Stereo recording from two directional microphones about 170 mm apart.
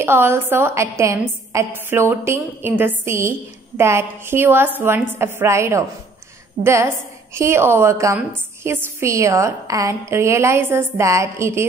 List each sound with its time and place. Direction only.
0.0 s a woman's voice: 15° right (ahead or behind)